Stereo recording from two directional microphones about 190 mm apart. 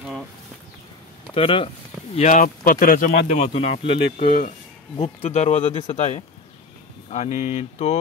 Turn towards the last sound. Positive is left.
turn(degrees=35)  # may be behind; listen again after turning